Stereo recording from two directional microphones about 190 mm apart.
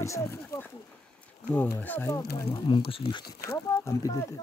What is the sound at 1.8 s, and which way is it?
Speech, 10° left (ahead or behind).